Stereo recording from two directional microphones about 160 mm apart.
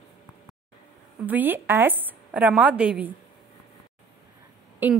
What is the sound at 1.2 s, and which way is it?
Speech, 10° right (ahead or behind).